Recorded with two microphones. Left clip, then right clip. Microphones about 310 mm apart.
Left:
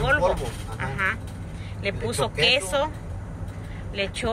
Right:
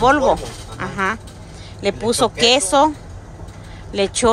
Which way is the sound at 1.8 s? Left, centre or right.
Centre.